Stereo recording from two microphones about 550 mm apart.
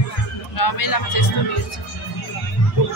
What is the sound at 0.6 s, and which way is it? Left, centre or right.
Speech, left.